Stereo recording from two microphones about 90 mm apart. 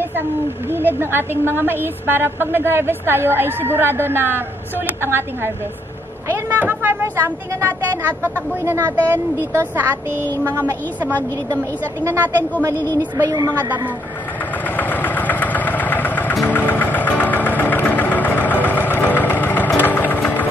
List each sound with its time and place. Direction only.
0.7 s a woman's voice: 25° right (ahead or behind)
10.2 s child singing: 20° left (ahead or behind)
10.5 s a woman's voice: 20° right (ahead or behind)
12.0 s a woman's voice: 30° right (ahead or behind)
12.9 s a woman's voice: 45° right (ahead or behind)
14.8 s vehicle: 20° left (ahead or behind)
16.4 s engine: 20° left (ahead or behind)